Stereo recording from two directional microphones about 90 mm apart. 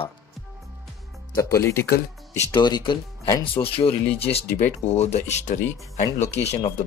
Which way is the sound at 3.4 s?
85° left.